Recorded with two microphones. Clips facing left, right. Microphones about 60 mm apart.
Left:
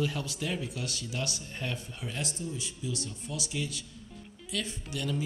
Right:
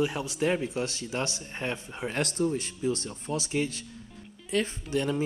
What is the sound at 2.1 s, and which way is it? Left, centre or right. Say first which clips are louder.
A man's voice: right 10 dB; right.